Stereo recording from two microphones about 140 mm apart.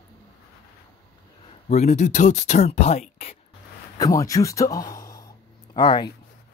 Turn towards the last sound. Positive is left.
turn(degrees=35)  # may be behind; listen again after turning